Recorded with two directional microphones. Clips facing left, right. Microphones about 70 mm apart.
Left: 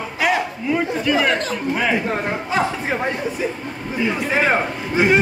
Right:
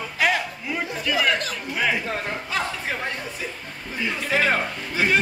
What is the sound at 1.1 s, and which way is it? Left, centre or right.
A man's voice, left.